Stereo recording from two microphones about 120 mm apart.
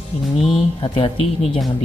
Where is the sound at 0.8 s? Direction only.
45° left (ahead or behind).